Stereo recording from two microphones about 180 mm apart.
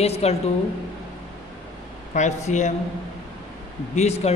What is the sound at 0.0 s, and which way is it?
Speech, 35° left (ahead or behind).